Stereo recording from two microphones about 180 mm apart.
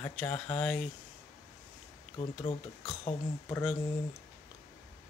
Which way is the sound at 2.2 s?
35° left (ahead or behind).